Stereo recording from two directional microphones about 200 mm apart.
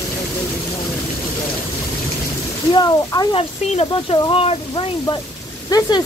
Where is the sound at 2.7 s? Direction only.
20° left (ahead or behind).